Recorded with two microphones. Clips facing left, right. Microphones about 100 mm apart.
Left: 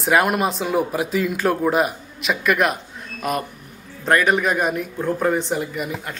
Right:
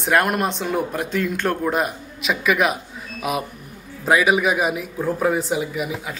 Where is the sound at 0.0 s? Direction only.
Centre (ahead or behind).